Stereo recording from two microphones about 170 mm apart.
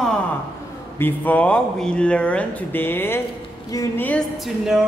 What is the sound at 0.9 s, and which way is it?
Speech, 10° left (ahead or behind).